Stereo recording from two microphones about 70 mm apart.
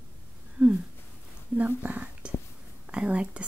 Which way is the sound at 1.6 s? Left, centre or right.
Right.